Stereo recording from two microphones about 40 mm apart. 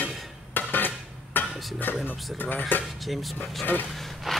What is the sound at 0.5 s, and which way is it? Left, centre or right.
Dishes, left.